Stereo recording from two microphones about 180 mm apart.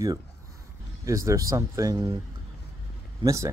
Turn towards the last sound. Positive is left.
turn(degrees=-15)  # may be behind; listen again after turning